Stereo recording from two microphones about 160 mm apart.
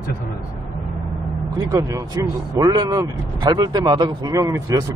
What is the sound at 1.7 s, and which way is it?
Speech, 20° right (ahead or behind).